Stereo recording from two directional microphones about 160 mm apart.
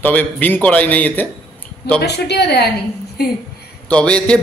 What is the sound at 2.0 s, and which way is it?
A woman's voice, 90° left.